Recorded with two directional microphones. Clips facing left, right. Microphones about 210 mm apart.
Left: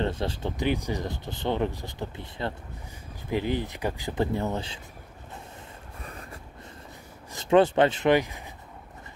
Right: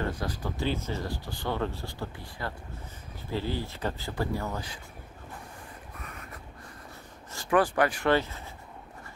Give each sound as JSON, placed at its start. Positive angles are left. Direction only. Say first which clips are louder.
{"t": 0.0, "sound": "speech", "louder": "left 4 dB", "side_deg": 25}
{"t": 5.9, "sound": "train", "louder": "left 4 dB", "side_deg": 30}
{"t": 7.3, "sound": "speech", "louder": "left 5 dB", "side_deg": 25}